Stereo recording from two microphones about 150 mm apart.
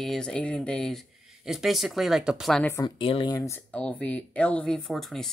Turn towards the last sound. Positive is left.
turn(degrees=0)  # may be behind; listen again after turning